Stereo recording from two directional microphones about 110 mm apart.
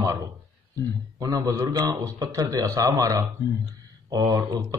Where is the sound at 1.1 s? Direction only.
30° right (ahead or behind).